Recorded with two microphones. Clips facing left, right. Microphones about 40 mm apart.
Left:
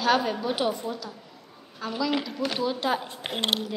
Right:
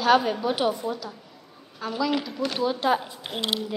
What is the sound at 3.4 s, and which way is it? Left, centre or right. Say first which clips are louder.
Speech: left 1 dB; left.